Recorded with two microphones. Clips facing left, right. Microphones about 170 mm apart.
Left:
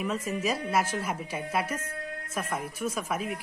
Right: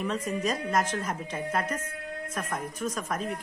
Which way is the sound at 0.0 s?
5° left (ahead or behind).